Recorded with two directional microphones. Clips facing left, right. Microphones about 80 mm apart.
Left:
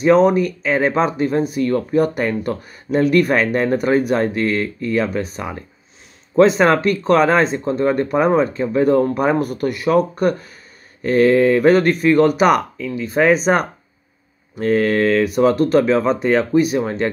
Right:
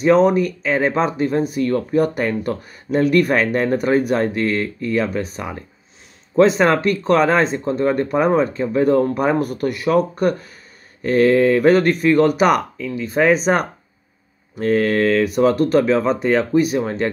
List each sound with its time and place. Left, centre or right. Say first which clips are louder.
0.0 s speech: left 1 dB; left
6.4 s speech: left 1 dB; left